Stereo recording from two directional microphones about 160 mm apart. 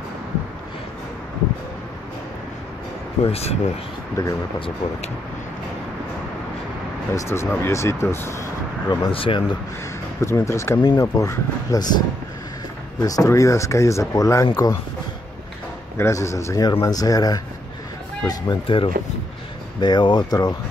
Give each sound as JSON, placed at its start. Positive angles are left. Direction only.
{"t": 3.3, "sound": "speech", "side_deg": 40}
{"t": 4.2, "sound": "speech", "side_deg": 25}
{"t": 4.6, "sound": "speech", "side_deg": 35}
{"t": 7.2, "sound": "speech", "side_deg": 15}
{"t": 8.8, "sound": "speech", "side_deg": 35}
{"t": 10.2, "sound": "speech", "side_deg": 20}
{"t": 13.0, "sound": "speech", "side_deg": 20}
{"t": 16.0, "sound": "speech", "side_deg": 20}